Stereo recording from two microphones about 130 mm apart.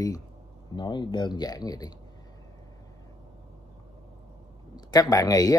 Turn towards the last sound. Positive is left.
turn(degrees=30)  # may be behind; listen again after turning